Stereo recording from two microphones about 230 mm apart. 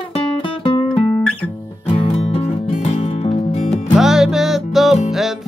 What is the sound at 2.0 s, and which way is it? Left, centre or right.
Music, left.